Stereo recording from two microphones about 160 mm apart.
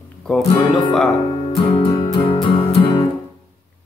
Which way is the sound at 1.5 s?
35° left (ahead or behind).